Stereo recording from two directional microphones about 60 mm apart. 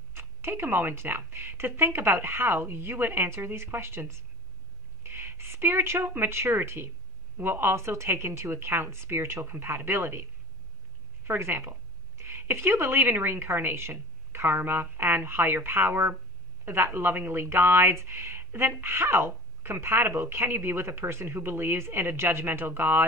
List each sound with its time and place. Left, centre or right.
0.1 s speech: right
11.2 s speech: right